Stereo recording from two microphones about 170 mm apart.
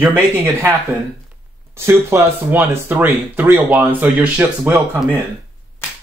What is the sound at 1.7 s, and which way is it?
Speech, 15° right (ahead or behind).